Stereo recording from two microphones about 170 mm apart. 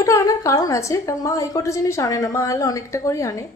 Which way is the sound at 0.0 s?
20° left (ahead or behind).